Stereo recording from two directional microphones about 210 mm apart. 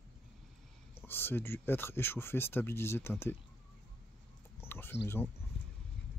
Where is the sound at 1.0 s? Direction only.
10° left (ahead or behind).